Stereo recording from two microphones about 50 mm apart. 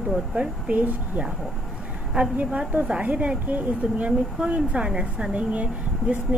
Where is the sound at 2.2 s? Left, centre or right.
Right.